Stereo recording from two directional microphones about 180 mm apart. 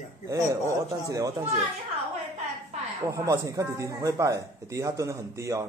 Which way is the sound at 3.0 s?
15° right (ahead or behind).